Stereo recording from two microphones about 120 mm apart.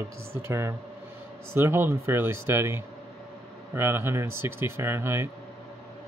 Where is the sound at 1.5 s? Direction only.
20° right (ahead or behind).